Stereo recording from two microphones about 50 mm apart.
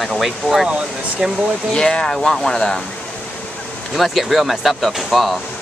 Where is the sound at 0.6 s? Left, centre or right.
Right.